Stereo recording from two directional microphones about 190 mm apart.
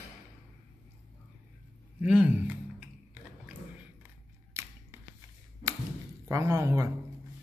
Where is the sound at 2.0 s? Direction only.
10° right (ahead or behind).